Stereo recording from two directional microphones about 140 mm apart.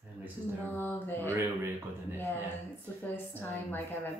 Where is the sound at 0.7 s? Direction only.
15° left (ahead or behind).